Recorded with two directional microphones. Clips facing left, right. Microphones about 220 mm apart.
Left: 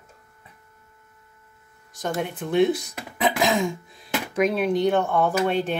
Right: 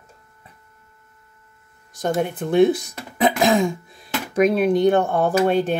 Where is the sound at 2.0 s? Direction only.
50° right (ahead or behind).